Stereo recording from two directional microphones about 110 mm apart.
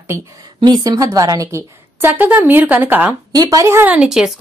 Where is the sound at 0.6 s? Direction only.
35° right (ahead or behind); by 3.2 s 15° right (ahead or behind).